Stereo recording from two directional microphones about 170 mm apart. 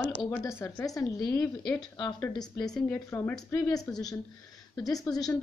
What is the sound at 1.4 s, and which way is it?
Speech, 5° left (ahead or behind).